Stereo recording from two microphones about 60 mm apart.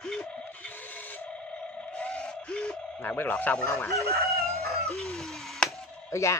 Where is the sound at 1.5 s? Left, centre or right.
Centre.